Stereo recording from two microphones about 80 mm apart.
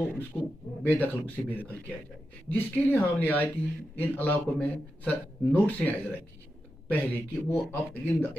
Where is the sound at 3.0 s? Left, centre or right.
Centre.